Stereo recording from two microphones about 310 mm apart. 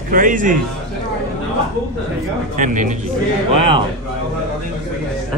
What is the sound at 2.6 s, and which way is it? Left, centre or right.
Speech, right.